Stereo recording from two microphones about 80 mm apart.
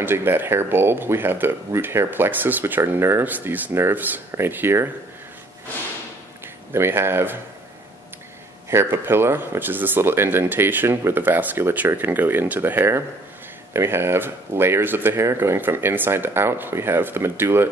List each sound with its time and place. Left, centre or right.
0.0 s speech: right
3.3 s speech: right
6.7 s speech: right
8.6 s speech: right